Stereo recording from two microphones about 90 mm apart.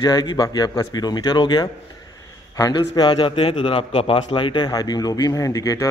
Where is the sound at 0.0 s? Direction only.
50° left (ahead or behind).